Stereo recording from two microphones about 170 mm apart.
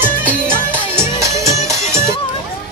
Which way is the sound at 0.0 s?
10° right (ahead or behind).